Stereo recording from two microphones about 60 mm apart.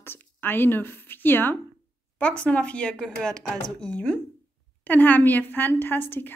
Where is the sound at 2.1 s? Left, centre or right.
Left.